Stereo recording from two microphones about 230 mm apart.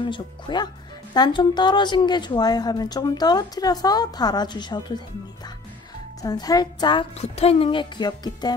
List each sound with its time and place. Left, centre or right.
0.0 s a woman's voice: centre
6.2 s a woman's voice: centre